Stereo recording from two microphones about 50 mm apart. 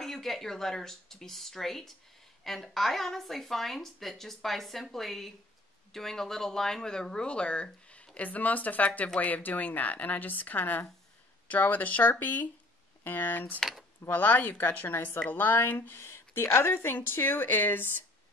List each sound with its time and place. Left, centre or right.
0.0 s a woman's voice: centre; by 13.5 s left
13.6 s speech: centre
14.1 s speech: left
16.0 s speech: left